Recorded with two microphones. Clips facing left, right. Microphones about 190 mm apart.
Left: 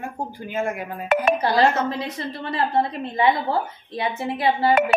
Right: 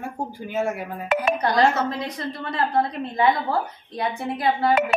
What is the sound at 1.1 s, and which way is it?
Speech, 60° left (ahead or behind).